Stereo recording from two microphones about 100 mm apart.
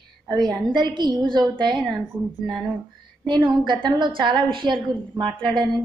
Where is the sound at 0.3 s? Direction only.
45° right (ahead or behind).